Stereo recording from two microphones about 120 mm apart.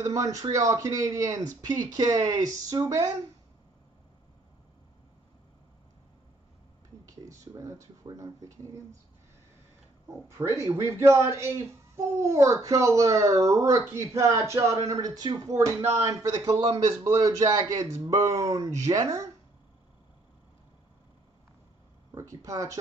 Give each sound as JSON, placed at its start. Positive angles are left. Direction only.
{"t": 0.0, "sound": "speech", "side_deg": -25}
{"t": 7.1, "sound": "speech", "side_deg": -25}
{"t": 10.2, "sound": "speech", "side_deg": -25}
{"t": 22.1, "sound": "speech", "side_deg": -25}